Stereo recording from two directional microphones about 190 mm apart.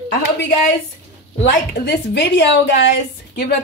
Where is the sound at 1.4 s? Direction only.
65° left (ahead or behind).